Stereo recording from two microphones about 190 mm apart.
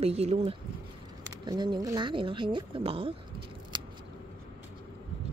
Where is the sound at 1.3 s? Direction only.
20° right (ahead or behind).